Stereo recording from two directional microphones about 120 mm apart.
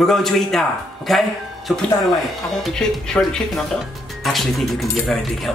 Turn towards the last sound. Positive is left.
turn(degrees=0)  # may be behind; listen again after turning